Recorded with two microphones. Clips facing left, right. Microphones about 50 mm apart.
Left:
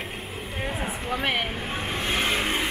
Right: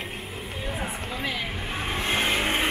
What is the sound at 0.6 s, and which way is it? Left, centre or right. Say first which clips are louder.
Speech: left 2 dB; left.